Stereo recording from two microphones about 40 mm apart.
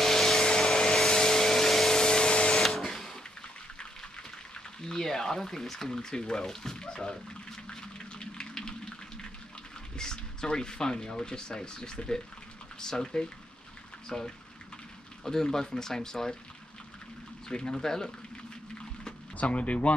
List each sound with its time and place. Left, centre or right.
0.0 s vacuum cleaner: centre
2.0 s vacuum cleaner: centre
2.6 s printer: centre
4.8 s speech: centre
7.7 s a sound: centre
9.9 s speech: centre
17.5 s speech: centre
19.3 s speech: left